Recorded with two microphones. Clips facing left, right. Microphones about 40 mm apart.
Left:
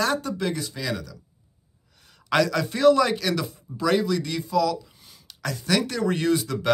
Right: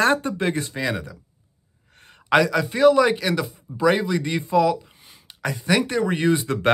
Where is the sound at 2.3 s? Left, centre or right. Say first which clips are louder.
Right 4 dB; centre.